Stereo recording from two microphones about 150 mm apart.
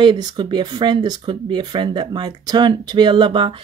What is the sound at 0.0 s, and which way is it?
A woman's voice, 30° right (ahead or behind).